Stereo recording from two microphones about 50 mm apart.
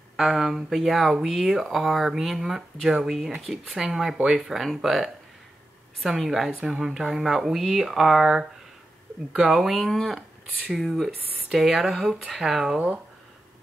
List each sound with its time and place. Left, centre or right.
0.2 s speech: centre
9.6 s speech: centre
12.7 s speech: right